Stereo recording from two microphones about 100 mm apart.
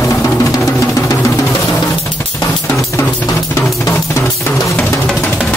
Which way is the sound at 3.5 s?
25° left (ahead or behind).